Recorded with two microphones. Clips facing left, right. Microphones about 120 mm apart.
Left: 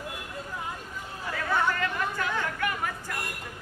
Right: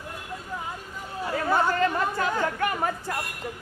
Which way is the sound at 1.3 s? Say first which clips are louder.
Right 4 dB; 35° right (ahead or behind).